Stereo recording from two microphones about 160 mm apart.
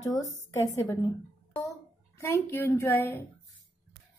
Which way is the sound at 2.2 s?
15° left (ahead or behind).